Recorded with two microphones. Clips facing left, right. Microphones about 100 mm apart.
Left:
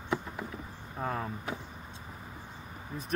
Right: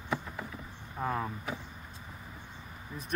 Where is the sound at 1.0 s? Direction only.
5° right (ahead or behind).